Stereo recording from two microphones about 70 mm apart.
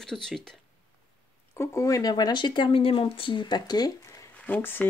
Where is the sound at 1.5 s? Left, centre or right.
Left.